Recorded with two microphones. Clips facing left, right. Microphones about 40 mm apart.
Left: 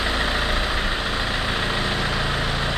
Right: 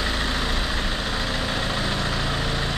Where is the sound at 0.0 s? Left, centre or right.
Centre.